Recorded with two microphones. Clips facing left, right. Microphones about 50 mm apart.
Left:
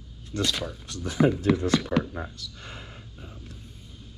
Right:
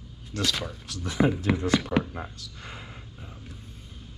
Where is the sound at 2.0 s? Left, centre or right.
Centre.